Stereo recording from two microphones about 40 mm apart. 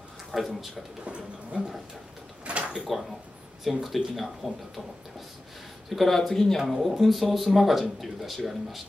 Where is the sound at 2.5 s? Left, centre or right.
Right.